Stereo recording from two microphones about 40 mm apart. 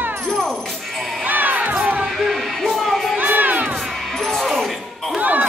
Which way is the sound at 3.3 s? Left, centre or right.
Right.